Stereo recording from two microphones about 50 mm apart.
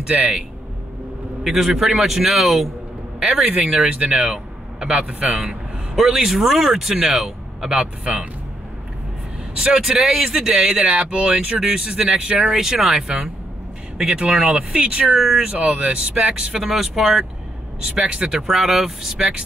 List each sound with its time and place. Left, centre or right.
0.0 s speech: centre
1.4 s a man's voice: centre
3.7 s speech: right
5.5 s a sound: centre
6.1 s speech: centre
9.6 s speech: centre
13.9 s speech: centre
15.0 s speech: centre
15.4 s speech: right
16.6 s a man's voice: centre
17.8 s speech: centre